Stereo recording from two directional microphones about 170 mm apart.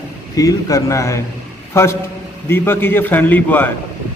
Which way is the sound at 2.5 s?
10° left (ahead or behind).